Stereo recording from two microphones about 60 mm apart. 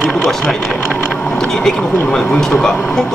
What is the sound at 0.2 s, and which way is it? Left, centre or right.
Speech, centre.